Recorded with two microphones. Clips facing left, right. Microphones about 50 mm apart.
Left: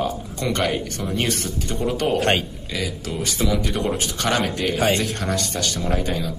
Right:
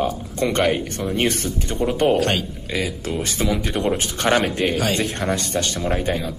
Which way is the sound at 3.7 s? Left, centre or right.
Right.